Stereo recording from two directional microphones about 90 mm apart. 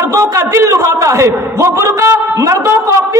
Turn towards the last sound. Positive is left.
turn(degrees=-35)  # may be behind; listen again after turning